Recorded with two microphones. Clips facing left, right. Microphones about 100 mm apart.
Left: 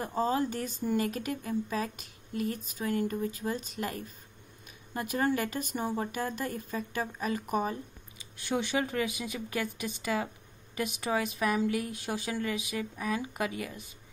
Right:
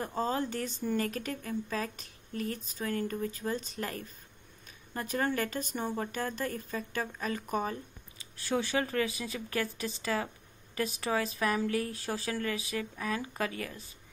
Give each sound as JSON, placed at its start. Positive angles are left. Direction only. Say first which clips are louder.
{"t": 0.0, "sound": "a woman's voice", "louder": "left 3 dB", "side_deg": 10}